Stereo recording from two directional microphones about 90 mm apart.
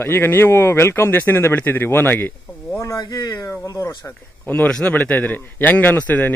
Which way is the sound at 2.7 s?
35° left (ahead or behind).